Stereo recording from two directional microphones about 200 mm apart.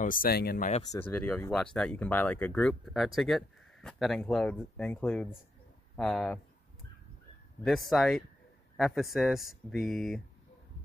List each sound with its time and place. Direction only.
0.0 s speech: 45° left (ahead or behind)
0.8 s speech: 10° left (ahead or behind)
7.6 s speech: centre (ahead or behind)